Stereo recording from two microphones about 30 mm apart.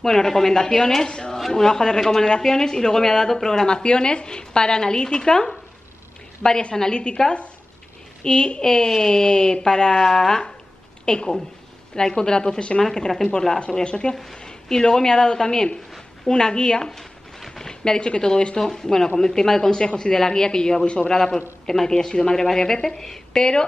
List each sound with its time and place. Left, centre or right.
0.0 s a woman's voice: centre
1.0 s a woman's voice: left
6.7 s a woman's voice: left
8.2 s a woman's voice: left
12.9 s speech: centre
13.8 s a woman's voice: left
16.8 s speech: centre
18.6 s a woman's voice: centre
20.8 s a woman's voice: left
21.1 s a woman's voice: centre
22.8 s speech: centre
23.3 s speech: left